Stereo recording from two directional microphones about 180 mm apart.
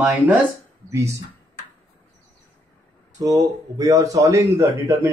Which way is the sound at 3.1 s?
20° right (ahead or behind).